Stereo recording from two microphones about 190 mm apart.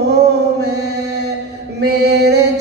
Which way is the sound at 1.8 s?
60° right (ahead or behind).